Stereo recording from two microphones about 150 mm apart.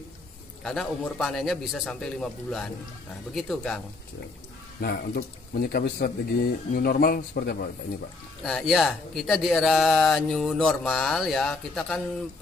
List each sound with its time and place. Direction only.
0.7 s speech: 5° left (ahead or behind)
4.7 s speech: 90° left
8.5 s speech: centre (ahead or behind)